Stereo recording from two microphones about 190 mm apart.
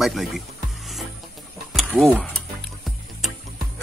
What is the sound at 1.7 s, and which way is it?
Mechanisms, centre (ahead or behind).